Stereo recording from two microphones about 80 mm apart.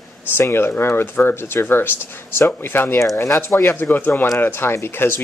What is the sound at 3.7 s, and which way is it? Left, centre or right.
Speech, left.